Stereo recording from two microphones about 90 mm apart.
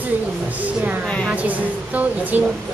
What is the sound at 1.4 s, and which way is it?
Speech, 15° right (ahead or behind).